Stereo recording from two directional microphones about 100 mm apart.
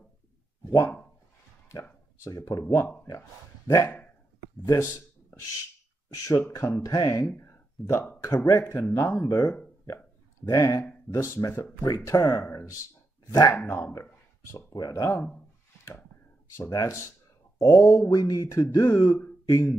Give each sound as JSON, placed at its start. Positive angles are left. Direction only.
{"t": 0.7, "sound": "speech", "side_deg": 35}
{"t": 2.2, "sound": "speech", "side_deg": 30}
{"t": 2.6, "sound": "speech", "side_deg": 20}
{"t": 3.1, "sound": "speech", "side_deg": 35}
{"t": 6.1, "sound": "speech", "side_deg": 30}
{"t": 10.4, "sound": "speech", "side_deg": 35}
{"t": 13.6, "sound": "speech", "side_deg": 20}
{"t": 14.7, "sound": "speech", "side_deg": 40}
{"t": 16.5, "sound": "speech", "side_deg": 30}